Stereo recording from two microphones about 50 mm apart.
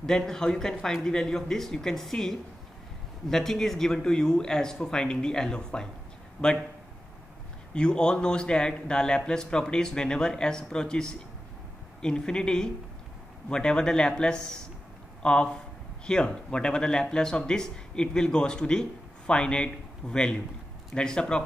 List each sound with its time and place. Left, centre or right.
0.0 s speech: centre
7.7 s speech: centre